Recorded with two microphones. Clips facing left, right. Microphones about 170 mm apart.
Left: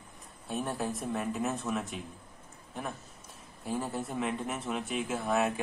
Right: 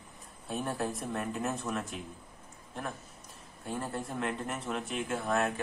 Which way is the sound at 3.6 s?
Centre (ahead or behind).